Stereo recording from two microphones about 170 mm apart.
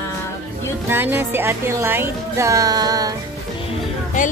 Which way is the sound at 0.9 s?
15° right (ahead or behind).